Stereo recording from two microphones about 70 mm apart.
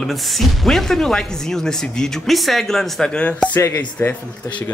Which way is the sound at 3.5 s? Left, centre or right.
Left.